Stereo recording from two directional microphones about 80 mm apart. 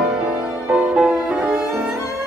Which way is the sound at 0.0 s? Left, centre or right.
Centre.